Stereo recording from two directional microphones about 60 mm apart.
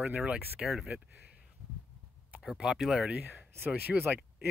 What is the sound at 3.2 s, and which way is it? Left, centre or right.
Speech, right.